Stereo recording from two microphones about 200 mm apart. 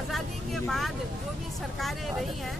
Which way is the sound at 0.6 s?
Centre (ahead or behind).